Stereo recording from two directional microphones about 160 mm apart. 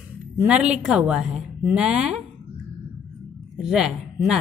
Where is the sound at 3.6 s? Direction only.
5° right (ahead or behind).